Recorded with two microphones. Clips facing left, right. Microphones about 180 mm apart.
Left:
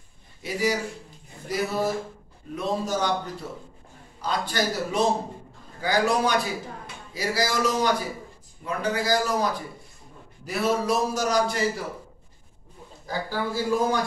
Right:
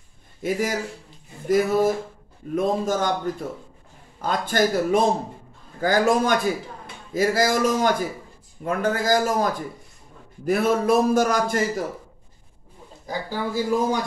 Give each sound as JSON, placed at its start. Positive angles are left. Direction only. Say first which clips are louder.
{"t": 0.4, "sound": "a man's voice", "louder": "right 2 dB", "side_deg": -50}
{"t": 13.0, "sound": "speech", "louder": "right 1 dB", "side_deg": -15}